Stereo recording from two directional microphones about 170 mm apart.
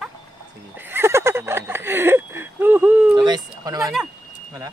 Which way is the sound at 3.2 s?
25° right (ahead or behind).